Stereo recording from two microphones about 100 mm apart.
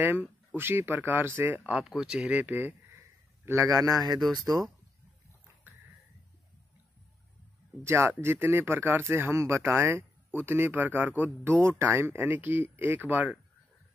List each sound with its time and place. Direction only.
0.0 s speech: 20° right (ahead or behind)
1.6 s speech: 5° right (ahead or behind)
3.0 s a sound: 30° right (ahead or behind)
7.8 s speech: 25° right (ahead or behind)